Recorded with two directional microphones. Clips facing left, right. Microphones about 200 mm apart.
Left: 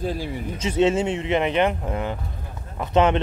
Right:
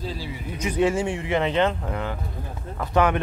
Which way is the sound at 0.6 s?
25° left (ahead or behind).